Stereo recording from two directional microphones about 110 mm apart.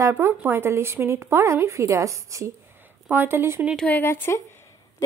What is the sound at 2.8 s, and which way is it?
Speech, 15° right (ahead or behind).